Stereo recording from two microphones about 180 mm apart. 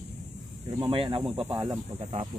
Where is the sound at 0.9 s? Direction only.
30° right (ahead or behind).